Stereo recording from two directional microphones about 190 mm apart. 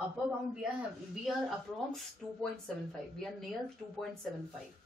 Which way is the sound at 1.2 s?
Centre (ahead or behind).